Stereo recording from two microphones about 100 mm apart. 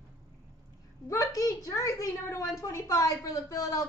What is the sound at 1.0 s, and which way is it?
A woman's voice, 30° left (ahead or behind).